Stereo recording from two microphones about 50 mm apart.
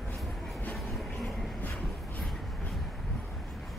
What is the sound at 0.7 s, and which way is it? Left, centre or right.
Train, centre.